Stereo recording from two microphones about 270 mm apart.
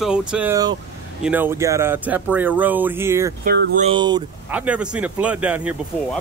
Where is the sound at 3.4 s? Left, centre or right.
Right.